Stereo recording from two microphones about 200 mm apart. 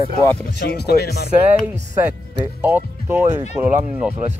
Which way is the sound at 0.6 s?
55° left (ahead or behind).